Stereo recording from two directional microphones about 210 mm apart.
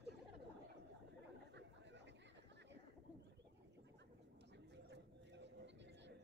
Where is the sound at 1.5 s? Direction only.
55° right (ahead or behind).